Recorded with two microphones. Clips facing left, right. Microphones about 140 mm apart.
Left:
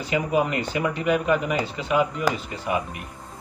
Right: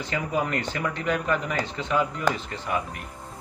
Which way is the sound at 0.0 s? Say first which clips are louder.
Left 4 dB; 15° left (ahead or behind).